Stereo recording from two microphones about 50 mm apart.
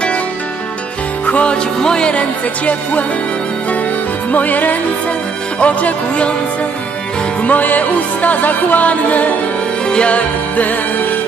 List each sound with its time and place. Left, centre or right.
1.2 s music: left
4.3 s music: left
7.4 s music: left